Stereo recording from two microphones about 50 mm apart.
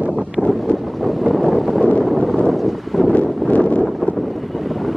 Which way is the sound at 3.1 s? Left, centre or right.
Left.